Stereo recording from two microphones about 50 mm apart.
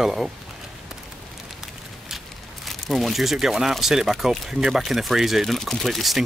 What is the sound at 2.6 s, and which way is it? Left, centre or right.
Speech, centre.